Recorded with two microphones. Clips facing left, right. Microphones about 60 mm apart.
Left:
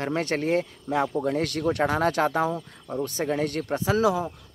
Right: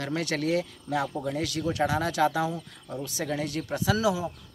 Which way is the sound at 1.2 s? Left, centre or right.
Left.